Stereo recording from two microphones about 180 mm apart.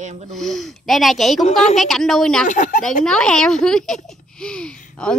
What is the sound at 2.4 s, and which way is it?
Speech, 45° left (ahead or behind).